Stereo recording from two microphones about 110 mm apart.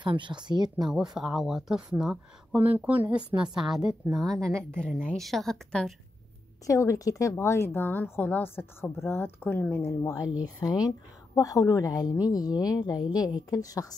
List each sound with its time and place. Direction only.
0.0 s a woman's voice: 45° right (ahead or behind)
1.1 s speech: 5° right (ahead or behind)
2.6 s speech: 15° right (ahead or behind)
3.5 s speech: 5° right (ahead or behind)
3.8 s speech: 35° right (ahead or behind)
4.4 s a woman's voice: 5° left (ahead or behind)
6.6 s a woman's voice: 30° left (ahead or behind)